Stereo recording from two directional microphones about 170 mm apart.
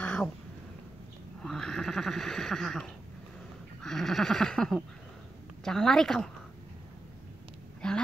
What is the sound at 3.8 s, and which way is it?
Goat, centre (ahead or behind).